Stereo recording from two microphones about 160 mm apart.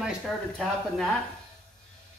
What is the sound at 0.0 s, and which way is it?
Speech, centre (ahead or behind).